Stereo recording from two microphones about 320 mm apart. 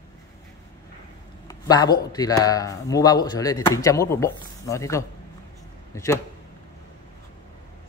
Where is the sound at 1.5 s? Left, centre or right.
Centre.